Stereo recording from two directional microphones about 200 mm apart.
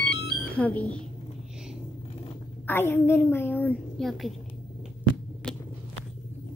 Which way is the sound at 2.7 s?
10° left (ahead or behind).